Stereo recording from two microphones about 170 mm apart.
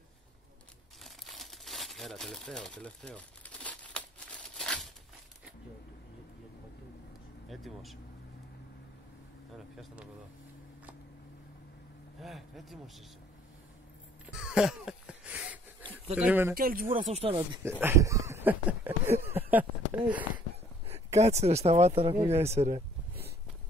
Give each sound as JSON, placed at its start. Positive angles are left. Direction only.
{"t": 1.0, "sound": "crumpling", "side_deg": 0}
{"t": 7.4, "sound": "speech", "side_deg": 0}
{"t": 12.2, "sound": "speech", "side_deg": 0}
{"t": 14.3, "sound": "wheeze", "side_deg": -5}
{"t": 16.2, "sound": "speech", "side_deg": -10}
{"t": 16.5, "sound": "speech", "side_deg": -55}
{"t": 17.1, "sound": "speech", "side_deg": -35}
{"t": 17.6, "sound": "speech", "side_deg": -15}
{"t": 20.8, "sound": "speech", "side_deg": -40}